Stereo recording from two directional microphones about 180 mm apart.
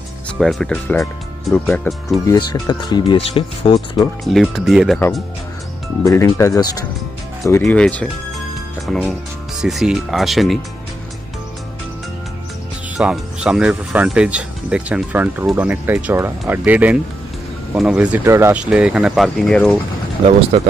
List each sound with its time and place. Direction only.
0.4 s speech: 5° left (ahead or behind)
2.2 s speech: 20° left (ahead or behind)
4.2 s speech: centre (ahead or behind)
6.0 s speech: 15° left (ahead or behind)
7.6 s speech: 5° left (ahead or behind)
12.9 s speech: 5° right (ahead or behind)
20.5 s speech: 40° right (ahead or behind)